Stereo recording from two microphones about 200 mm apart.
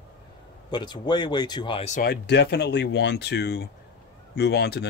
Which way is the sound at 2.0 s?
55° left (ahead or behind).